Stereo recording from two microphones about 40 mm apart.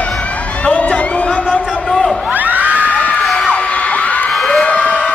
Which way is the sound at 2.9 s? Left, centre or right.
Left.